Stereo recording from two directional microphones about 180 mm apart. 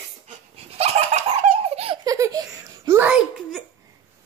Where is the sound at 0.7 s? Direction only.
35° right (ahead or behind).